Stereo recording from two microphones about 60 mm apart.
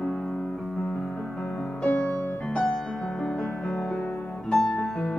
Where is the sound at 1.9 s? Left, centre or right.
Left.